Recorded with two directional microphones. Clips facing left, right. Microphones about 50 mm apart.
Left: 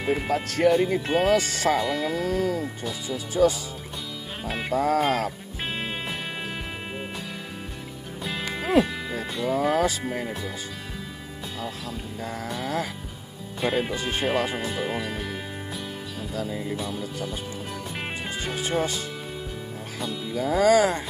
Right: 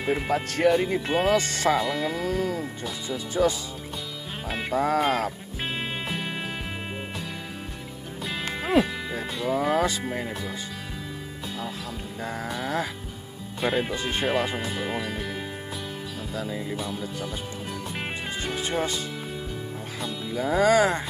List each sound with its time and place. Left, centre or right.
0.0 s speech: centre
3.4 s speech: right
4.5 s speech: centre
4.7 s speech: centre
5.0 s music: centre
8.2 s speech: centre
12.2 s speech: centre
16.4 s speech: centre
20.0 s speech: centre